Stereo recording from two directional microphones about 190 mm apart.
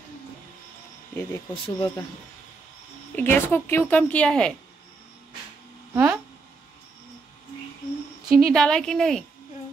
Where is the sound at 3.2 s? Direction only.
10° left (ahead or behind).